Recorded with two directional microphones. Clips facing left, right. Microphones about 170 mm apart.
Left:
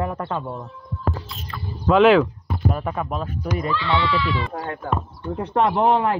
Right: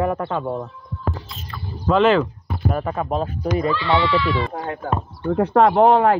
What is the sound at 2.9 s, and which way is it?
Speech, 35° right (ahead or behind).